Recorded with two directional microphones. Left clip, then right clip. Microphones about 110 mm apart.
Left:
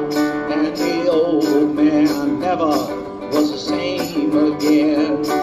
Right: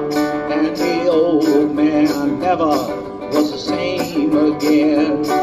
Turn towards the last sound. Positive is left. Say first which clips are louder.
# right 2 dB
turn(degrees=-35)  # may be behind; listen again after turning